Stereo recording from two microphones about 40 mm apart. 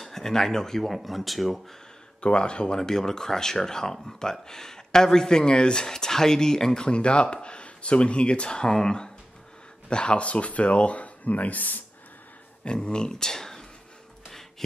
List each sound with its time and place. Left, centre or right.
0.0 s speech: centre
2.2 s speech: left
2.8 s speech: centre; by 11.8 s left
12.6 s speech: left